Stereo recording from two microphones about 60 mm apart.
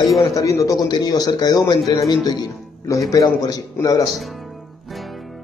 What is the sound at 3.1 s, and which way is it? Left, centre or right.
Speech, left.